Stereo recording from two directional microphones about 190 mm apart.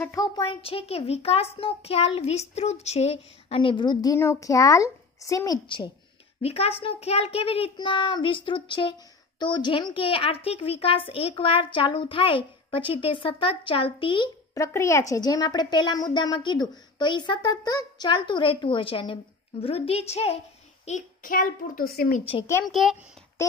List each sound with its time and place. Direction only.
0.0 s a woman's voice: 20° left (ahead or behind); by 22.2 s 50° left (ahead or behind)
22.7 s a child's voice: centre (ahead or behind)